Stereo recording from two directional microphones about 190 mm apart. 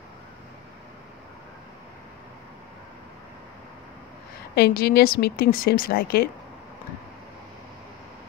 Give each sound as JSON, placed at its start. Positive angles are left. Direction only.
{"t": 4.6, "sound": "a woman's voice", "side_deg": 55}